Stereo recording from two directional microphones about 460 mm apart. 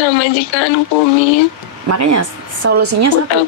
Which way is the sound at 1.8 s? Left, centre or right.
Right.